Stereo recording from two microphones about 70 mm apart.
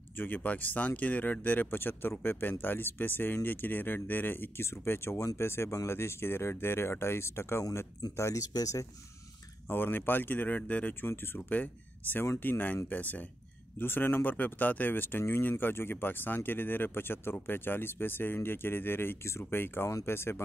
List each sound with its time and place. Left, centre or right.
0.2 s speech: left
9.7 s speech: left